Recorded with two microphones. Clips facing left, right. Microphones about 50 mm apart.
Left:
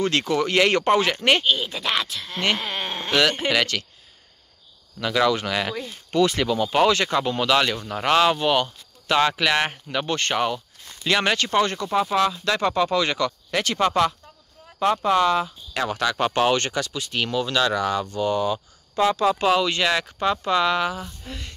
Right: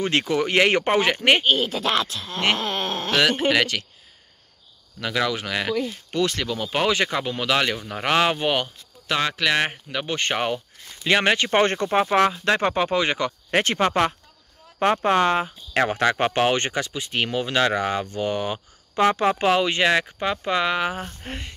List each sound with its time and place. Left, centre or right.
0.0 s speech: centre
3.2 s speech: centre
5.0 s speech: centre
11.5 s speech: right
13.5 s speech: right
20.9 s speech: right